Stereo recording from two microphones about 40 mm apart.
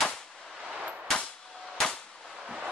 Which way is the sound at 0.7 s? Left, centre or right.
Right.